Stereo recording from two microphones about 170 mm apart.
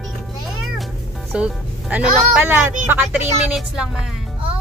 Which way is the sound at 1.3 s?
5° right (ahead or behind).